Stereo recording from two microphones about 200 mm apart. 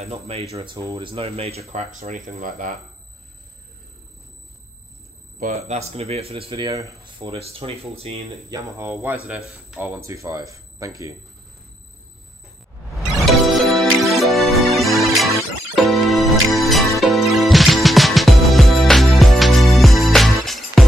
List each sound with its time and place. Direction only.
0.0 s speech: 30° right (ahead or behind)
0.7 s speech: 20° right (ahead or behind); by 2.7 s 40° right (ahead or behind)
5.4 s speech: 35° right (ahead or behind)
8.5 s speech: 15° right (ahead or behind)
12.9 s music: centre (ahead or behind)